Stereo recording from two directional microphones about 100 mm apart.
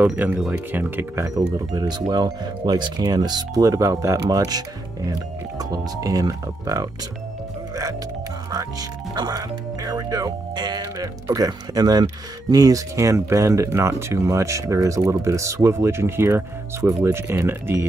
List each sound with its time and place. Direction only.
0.0 s speech: 15° right (ahead or behind)
1.7 s speech: 45° right (ahead or behind)
8.5 s speech: 40° right (ahead or behind)
10.8 s speech: 30° right (ahead or behind)